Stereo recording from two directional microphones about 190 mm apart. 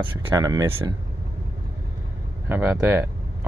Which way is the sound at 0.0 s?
20° right (ahead or behind).